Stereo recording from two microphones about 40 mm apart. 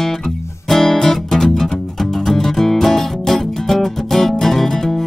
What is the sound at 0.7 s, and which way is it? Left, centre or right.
Music, centre.